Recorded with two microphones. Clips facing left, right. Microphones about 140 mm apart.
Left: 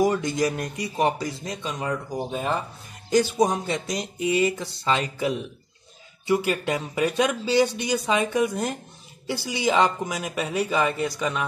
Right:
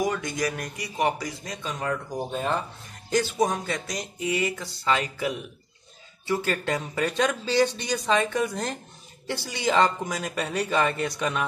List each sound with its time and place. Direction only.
0.0 s speech: 25° left (ahead or behind); by 2.6 s 5° left (ahead or behind)
3.1 s speech: 20° left (ahead or behind); by 11.4 s centre (ahead or behind)